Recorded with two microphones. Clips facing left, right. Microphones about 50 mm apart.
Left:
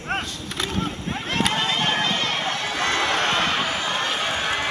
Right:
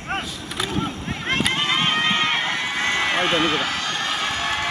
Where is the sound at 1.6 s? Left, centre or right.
Right.